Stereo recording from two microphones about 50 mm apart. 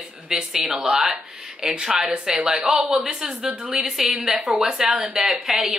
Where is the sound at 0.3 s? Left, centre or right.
Centre.